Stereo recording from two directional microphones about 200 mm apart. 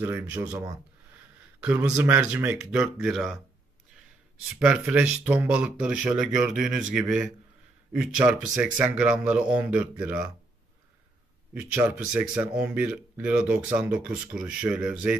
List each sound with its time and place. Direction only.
0.0 s speech: 15° right (ahead or behind)
4.6 s speech: 5° right (ahead or behind)
11.5 s speech: 10° right (ahead or behind)